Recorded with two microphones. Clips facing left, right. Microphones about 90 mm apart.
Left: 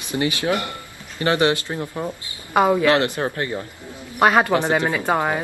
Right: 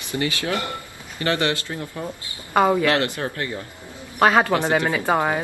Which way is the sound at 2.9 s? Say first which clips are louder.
Left 3 dB; 20° left (ahead or behind).